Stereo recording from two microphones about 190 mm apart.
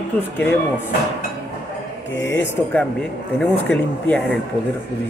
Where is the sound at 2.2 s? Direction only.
10° left (ahead or behind).